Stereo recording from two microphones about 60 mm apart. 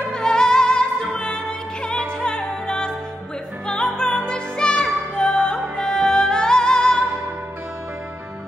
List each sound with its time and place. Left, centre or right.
0.0 s music: centre